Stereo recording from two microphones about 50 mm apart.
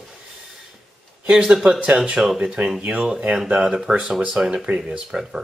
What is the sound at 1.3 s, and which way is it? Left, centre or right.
Speech, centre.